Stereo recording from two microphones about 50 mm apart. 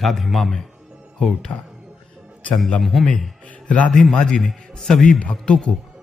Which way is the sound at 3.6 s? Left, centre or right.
Left.